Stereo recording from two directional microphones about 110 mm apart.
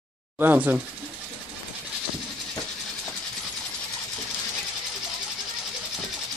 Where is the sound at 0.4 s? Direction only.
15° right (ahead or behind).